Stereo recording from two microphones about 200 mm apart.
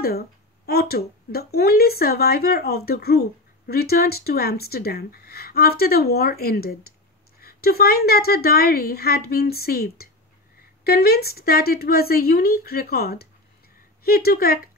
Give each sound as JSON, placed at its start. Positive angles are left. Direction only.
{"t": 0.7, "sound": "speech", "side_deg": 50}